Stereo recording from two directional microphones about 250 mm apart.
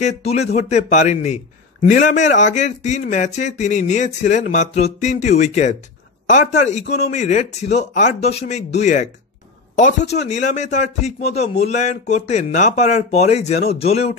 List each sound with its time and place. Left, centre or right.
0.0 s a man's voice: left